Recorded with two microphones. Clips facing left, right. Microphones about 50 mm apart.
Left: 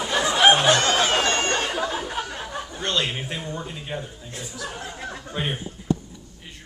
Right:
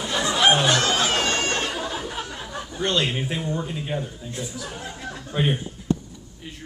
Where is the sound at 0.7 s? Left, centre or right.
Centre.